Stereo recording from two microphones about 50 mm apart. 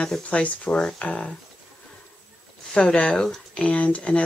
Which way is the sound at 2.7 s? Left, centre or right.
Centre.